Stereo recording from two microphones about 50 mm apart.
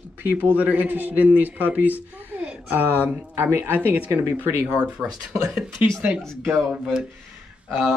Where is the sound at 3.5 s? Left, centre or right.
Right.